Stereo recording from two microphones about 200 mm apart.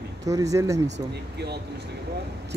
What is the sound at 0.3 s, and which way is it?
Speech, 15° right (ahead or behind).